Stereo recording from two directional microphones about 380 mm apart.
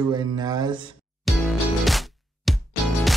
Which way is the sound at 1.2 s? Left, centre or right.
Centre.